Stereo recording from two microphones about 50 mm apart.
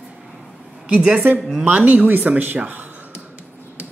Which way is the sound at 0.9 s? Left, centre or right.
Right.